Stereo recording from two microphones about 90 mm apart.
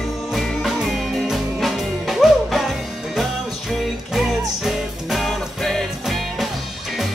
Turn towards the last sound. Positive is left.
turn(degrees=0)  # may be behind; listen again after turning